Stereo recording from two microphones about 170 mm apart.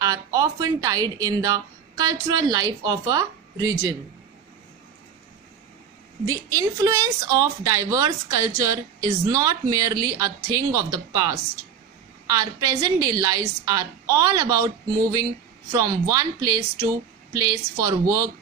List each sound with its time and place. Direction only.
0.0 s a woman's voice: 20° right (ahead or behind)
6.2 s a woman's voice: 20° right (ahead or behind)
15.7 s a woman's voice: 20° right (ahead or behind)